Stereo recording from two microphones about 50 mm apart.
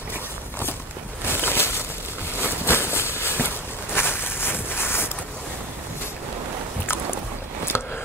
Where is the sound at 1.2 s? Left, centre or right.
Left.